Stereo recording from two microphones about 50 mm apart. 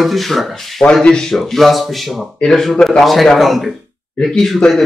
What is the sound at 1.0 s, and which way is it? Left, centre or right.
Speech, centre.